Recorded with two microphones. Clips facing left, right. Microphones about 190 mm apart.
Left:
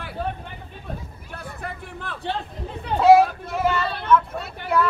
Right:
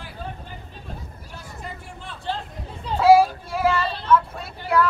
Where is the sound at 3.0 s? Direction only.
5° right (ahead or behind).